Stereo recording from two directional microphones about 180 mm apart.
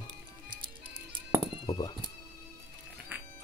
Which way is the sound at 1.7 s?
25° left (ahead or behind).